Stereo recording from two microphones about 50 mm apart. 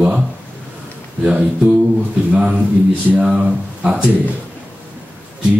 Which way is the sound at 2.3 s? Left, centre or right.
Right.